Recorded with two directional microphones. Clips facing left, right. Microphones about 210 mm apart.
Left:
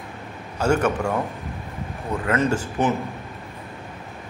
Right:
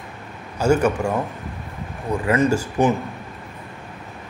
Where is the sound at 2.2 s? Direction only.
10° right (ahead or behind).